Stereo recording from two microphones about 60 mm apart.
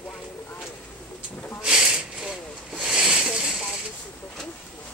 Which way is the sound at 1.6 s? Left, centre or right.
Centre.